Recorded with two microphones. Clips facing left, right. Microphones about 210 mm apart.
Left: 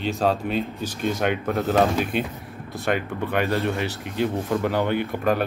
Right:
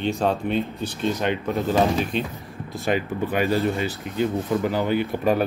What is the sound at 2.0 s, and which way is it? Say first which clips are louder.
Speech: even; 10° left (ahead or behind).